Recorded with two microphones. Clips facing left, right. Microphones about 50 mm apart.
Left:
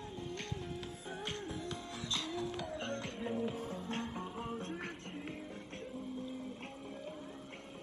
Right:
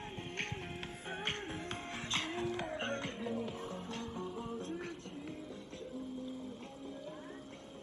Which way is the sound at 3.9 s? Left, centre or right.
Left.